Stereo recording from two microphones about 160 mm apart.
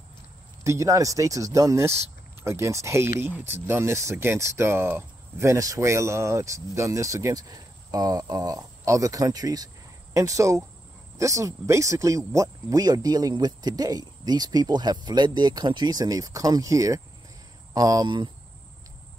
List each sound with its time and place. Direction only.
0.7 s speech: 20° right (ahead or behind)